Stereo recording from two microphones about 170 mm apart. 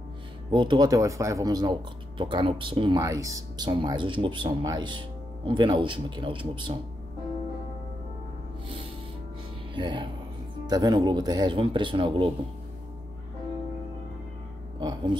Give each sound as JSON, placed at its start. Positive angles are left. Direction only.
{"t": 0.5, "sound": "speech", "side_deg": -25}
{"t": 9.8, "sound": "speech", "side_deg": -25}
{"t": 14.8, "sound": "a sound", "side_deg": -25}